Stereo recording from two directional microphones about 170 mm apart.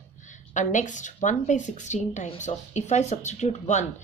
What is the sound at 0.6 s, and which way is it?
Speech, 45° left (ahead or behind).